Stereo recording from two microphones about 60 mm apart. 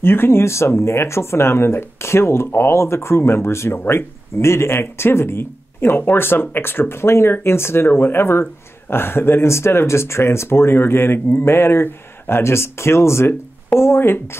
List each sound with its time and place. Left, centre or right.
0.0 s speech: left